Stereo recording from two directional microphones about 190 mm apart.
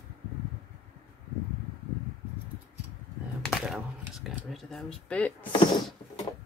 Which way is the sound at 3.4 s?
5° right (ahead or behind).